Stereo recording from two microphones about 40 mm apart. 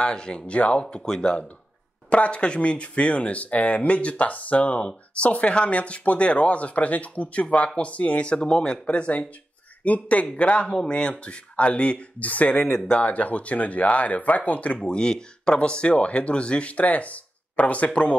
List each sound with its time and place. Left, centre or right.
0.0 s speech: left
2.0 s speech: left
7.4 s speech: left
8.4 s speech: centre
8.8 s speech: left
12.7 s speech: left
13.0 s speech: left
14.9 s speech: left